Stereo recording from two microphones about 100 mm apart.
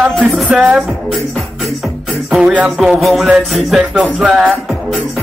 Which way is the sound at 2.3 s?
5° right (ahead or behind).